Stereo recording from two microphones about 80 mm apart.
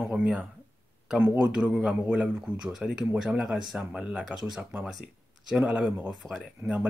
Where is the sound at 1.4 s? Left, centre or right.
Centre.